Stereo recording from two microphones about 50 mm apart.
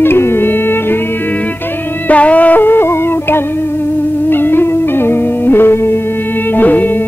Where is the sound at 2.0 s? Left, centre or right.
Left.